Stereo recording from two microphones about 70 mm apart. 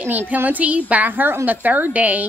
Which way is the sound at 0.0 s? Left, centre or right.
Right.